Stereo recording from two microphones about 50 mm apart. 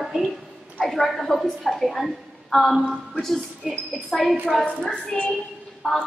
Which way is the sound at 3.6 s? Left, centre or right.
Centre.